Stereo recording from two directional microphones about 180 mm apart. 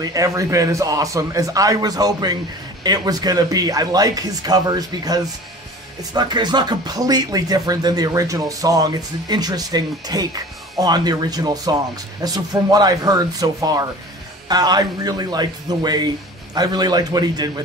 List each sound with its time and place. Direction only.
0.0 s speech: 20° right (ahead or behind)